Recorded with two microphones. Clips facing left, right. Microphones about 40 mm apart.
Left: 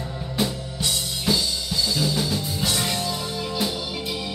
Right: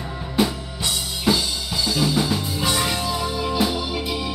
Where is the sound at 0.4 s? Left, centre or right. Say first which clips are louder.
Right 4 dB; centre.